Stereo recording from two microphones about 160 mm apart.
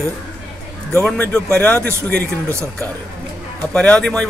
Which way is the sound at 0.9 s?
5° left (ahead or behind).